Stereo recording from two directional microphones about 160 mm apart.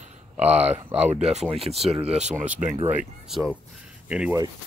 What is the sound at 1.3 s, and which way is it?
Speech, 40° right (ahead or behind).